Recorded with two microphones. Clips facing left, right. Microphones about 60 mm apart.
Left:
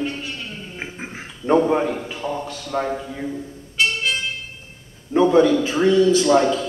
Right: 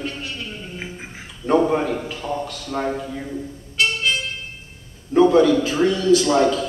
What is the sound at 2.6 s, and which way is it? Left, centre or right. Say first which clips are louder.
Speech: left 1 dB; centre.